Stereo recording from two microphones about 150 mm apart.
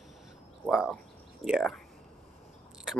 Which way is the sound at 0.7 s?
Centre (ahead or behind).